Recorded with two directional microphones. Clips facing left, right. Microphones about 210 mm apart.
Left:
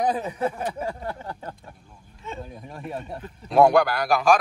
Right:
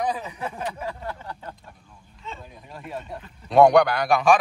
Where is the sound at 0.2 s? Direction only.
40° left (ahead or behind).